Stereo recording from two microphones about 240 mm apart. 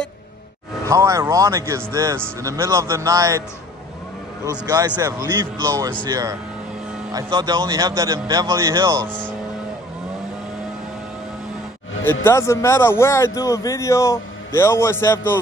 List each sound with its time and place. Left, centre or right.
0.8 s speech: centre
4.5 s speech: centre
12.0 s speech: centre